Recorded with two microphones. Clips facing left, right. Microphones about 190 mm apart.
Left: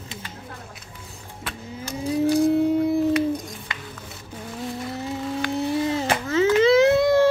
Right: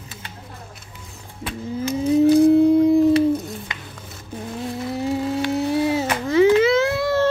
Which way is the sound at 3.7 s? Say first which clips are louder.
Even; 20° right (ahead or behind).